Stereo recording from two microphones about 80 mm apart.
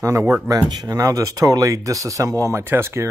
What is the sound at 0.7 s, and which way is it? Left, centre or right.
Speech, right.